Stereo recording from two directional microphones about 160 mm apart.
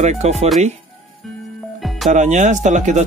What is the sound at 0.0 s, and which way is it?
Speech, 45° right (ahead or behind).